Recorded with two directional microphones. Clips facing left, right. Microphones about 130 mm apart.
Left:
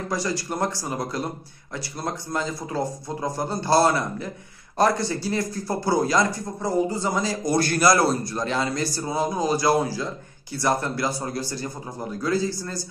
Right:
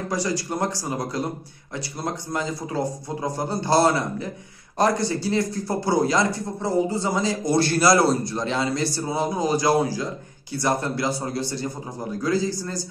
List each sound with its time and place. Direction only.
0.1 s a man's voice: 20° right (ahead or behind)